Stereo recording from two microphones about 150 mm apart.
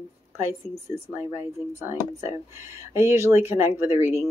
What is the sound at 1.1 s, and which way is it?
Speech, 15° right (ahead or behind).